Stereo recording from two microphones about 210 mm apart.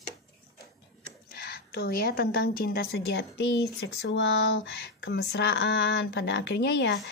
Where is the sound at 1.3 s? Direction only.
50° left (ahead or behind).